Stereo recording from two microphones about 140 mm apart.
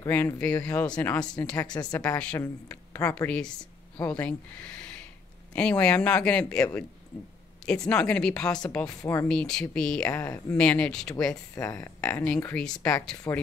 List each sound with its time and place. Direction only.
0.1 s speech: 10° left (ahead or behind)
1.7 s speech: 30° left (ahead or behind)
2.1 s speech: 10° left (ahead or behind)
2.4 s speech: 20° left (ahead or behind); by 8.5 s 5° left (ahead or behind)
9.0 s speech: 20° left (ahead or behind)
9.3 s speech: 5° left (ahead or behind)
10.1 s speech: 20° left (ahead or behind)
10.6 s speech: 10° left (ahead or behind)